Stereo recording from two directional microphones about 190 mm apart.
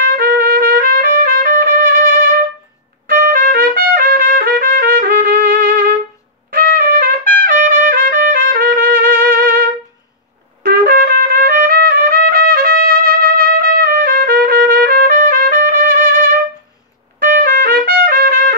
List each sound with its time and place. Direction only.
0.1 s trumpet: 50° right (ahead or behind)
10.6 s trumpet: 50° right (ahead or behind)